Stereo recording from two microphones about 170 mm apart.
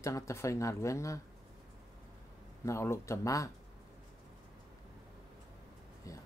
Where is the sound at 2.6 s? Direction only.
15° left (ahead or behind).